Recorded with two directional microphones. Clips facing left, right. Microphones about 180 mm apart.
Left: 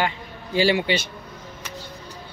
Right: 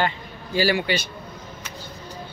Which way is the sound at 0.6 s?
25° left (ahead or behind).